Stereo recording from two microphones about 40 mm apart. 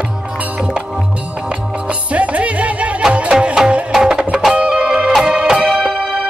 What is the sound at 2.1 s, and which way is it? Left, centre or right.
Music, right.